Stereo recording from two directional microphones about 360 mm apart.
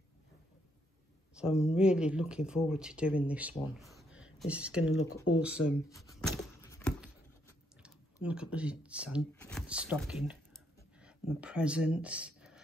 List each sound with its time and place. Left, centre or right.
1.3 s speech: centre
4.8 s speech: left
5.4 s speech: centre
5.9 s a sound: centre
7.8 s speech: centre